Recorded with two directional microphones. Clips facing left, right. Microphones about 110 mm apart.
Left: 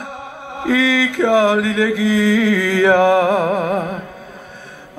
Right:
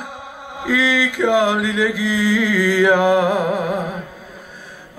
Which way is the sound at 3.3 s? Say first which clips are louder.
Left 3 dB; 25° left (ahead or behind).